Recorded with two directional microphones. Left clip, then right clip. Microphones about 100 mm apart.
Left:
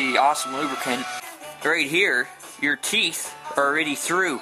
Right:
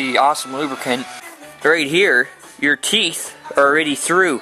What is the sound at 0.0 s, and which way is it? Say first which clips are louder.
Speech: right 4 dB; 15° right (ahead or behind).